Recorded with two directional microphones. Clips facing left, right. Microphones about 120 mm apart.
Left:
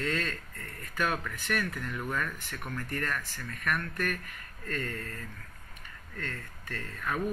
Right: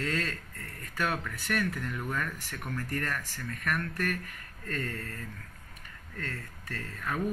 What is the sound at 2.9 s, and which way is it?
Speech, 40° right (ahead or behind).